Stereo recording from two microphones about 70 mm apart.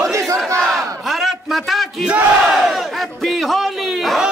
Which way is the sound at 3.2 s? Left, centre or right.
Centre.